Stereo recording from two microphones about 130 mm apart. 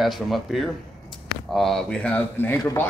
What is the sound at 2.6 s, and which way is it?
Speech, 25° left (ahead or behind).